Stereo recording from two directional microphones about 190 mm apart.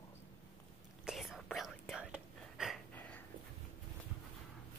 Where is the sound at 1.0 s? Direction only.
Centre (ahead or behind).